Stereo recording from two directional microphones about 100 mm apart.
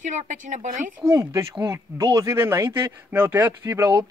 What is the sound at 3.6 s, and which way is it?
Speech, 30° right (ahead or behind).